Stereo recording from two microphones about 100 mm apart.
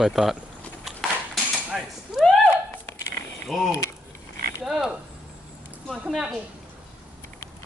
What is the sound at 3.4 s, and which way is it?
Speech, centre (ahead or behind).